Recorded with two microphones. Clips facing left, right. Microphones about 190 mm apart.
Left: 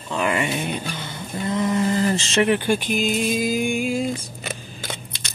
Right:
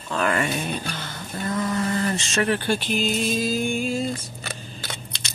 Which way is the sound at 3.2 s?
10° left (ahead or behind).